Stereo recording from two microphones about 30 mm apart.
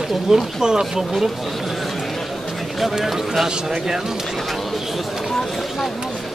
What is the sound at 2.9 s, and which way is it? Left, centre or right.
Speech, centre.